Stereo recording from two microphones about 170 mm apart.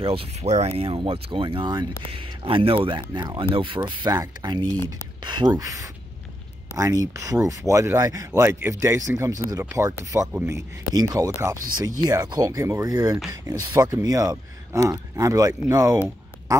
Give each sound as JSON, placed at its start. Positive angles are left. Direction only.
{"t": 0.0, "sound": "speech", "side_deg": -35}